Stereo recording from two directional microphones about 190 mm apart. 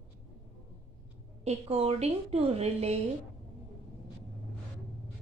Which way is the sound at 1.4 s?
30° right (ahead or behind).